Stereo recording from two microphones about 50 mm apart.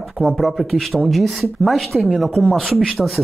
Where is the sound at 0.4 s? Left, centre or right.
Centre.